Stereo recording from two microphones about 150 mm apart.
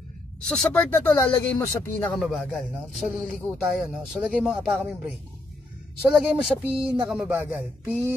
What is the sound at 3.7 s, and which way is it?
Speech, centre (ahead or behind).